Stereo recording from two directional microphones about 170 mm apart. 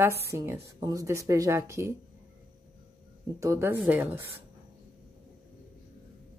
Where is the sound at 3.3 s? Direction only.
15° right (ahead or behind).